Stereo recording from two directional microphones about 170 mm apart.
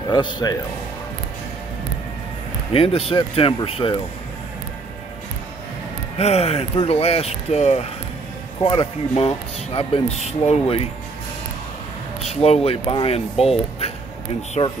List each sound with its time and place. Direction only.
0.1 s a man's voice: 25° left (ahead or behind)
2.7 s speech: 35° left (ahead or behind)
6.1 s speech: 40° left (ahead or behind)
12.2 s speech: 40° left (ahead or behind)